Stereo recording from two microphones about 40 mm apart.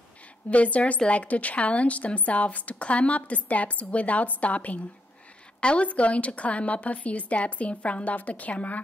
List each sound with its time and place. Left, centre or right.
0.5 s a woman's voice: left